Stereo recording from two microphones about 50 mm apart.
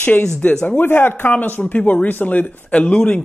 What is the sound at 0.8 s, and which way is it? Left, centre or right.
Speech, left.